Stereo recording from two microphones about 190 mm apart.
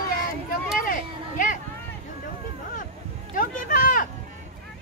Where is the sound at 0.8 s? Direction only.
45° left (ahead or behind).